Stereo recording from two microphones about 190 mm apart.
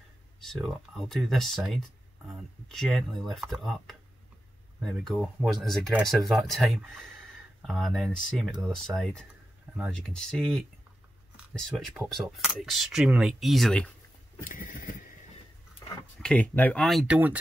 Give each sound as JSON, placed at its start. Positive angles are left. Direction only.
{"t": 0.4, "sound": "speech", "side_deg": 0}
{"t": 5.0, "sound": "speech", "side_deg": -5}
{"t": 10.2, "sound": "speech", "side_deg": 0}
{"t": 11.7, "sound": "speech", "side_deg": 0}
{"t": 14.4, "sound": "a sound", "side_deg": 45}
{"t": 15.8, "sound": "a sound", "side_deg": 20}
{"t": 16.2, "sound": "speech", "side_deg": 5}